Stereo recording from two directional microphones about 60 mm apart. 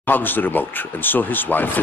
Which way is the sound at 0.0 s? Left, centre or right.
Left.